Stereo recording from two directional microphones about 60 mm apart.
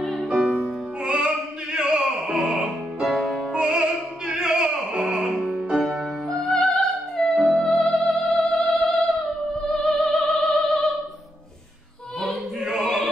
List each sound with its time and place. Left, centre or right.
0.0 s music: centre
1.0 s opera: centre
3.5 s music: centre
9.8 s music: centre
12.2 s opera: centre